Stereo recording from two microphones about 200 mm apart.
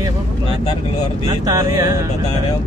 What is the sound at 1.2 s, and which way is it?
Speech, 20° right (ahead or behind).